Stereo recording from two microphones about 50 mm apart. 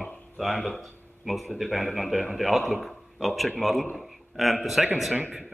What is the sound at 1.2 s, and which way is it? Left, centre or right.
A man's voice, centre.